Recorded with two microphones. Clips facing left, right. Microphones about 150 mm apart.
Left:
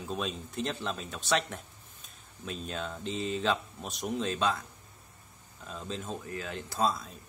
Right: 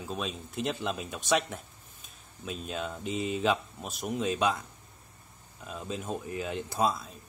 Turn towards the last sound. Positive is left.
turn(degrees=-15)  # may be behind; listen again after turning